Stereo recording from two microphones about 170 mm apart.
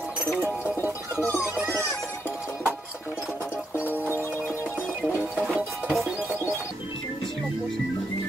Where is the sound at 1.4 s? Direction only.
5° right (ahead or behind).